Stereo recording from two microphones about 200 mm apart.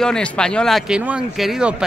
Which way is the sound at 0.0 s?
5° left (ahead or behind).